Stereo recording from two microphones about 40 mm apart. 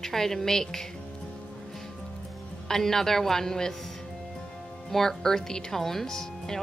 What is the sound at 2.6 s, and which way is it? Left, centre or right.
A woman's voice, centre.